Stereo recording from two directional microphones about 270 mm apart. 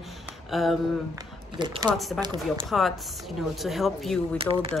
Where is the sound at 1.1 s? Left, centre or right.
Centre.